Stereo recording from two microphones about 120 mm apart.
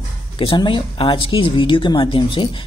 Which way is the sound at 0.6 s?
40° left (ahead or behind).